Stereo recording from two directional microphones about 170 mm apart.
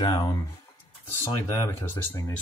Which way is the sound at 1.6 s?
15° left (ahead or behind).